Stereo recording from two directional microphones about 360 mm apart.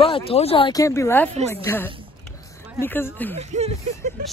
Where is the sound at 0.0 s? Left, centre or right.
Centre.